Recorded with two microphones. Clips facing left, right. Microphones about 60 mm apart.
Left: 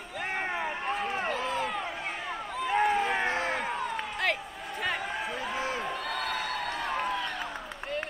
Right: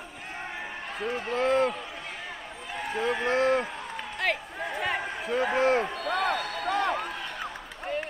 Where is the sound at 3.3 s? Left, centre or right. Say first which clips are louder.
Right 6 dB; right.